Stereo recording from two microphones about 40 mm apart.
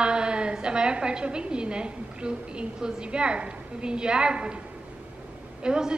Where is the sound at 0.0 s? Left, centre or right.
Right.